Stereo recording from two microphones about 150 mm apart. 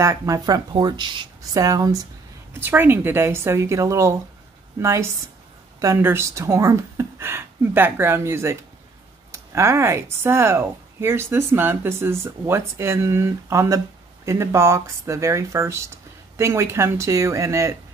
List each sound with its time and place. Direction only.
0.0 s speech: 20° right (ahead or behind)